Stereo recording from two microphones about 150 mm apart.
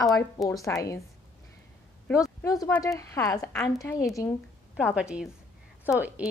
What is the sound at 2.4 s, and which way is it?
A woman's voice, 25° left (ahead or behind).